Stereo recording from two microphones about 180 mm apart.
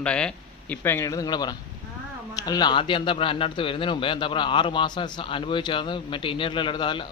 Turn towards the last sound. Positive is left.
turn(degrees=25)  # may be behind; listen again after turning